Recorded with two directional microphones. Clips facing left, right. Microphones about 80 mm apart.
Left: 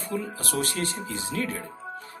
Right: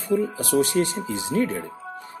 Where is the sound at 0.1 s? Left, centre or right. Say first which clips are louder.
Right 9 dB; centre.